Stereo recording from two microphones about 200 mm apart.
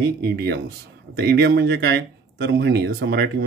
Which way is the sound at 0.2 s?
55° right (ahead or behind).